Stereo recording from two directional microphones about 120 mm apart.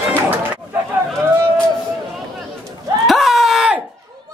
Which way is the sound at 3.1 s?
Centre (ahead or behind).